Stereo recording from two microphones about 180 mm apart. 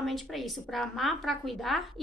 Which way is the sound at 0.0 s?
Centre (ahead or behind).